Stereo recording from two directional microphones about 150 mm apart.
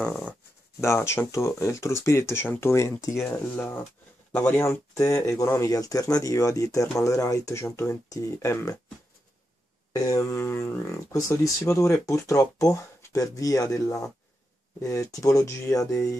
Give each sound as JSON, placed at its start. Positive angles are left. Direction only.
{"t": 0.0, "sound": "a sound", "side_deg": 10}
{"t": 0.7, "sound": "speech", "side_deg": 15}
{"t": 9.9, "sound": "speech", "side_deg": 20}